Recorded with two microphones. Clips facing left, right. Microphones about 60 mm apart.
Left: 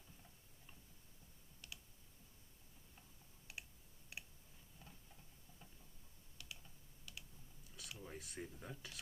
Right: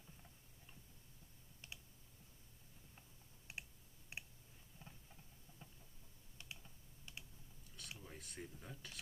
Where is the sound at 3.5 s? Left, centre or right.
Right.